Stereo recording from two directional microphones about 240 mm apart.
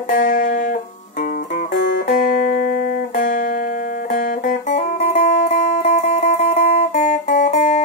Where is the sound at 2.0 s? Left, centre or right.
Left.